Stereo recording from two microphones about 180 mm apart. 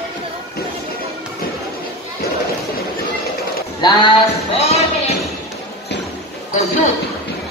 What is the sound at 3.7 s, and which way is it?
Speech, 25° left (ahead or behind).